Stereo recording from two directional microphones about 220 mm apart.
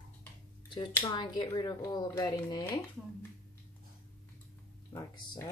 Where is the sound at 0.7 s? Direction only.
20° left (ahead or behind).